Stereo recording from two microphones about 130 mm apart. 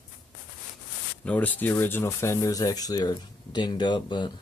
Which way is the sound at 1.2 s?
10° left (ahead or behind).